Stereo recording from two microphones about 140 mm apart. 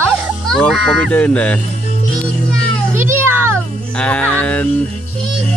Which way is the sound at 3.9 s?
10° left (ahead or behind).